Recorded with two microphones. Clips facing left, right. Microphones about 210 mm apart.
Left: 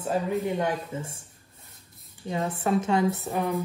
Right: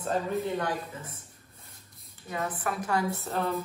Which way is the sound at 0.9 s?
30° left (ahead or behind).